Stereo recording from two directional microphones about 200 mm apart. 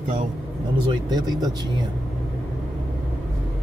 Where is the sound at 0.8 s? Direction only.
20° right (ahead or behind).